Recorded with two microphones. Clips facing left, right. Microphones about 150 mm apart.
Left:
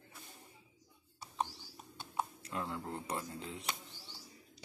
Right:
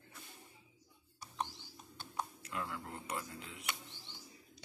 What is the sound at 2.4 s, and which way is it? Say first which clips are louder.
Speech: left 2 dB; 30° left (ahead or behind).